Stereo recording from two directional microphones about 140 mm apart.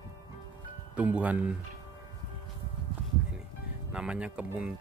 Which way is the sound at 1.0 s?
10° right (ahead or behind).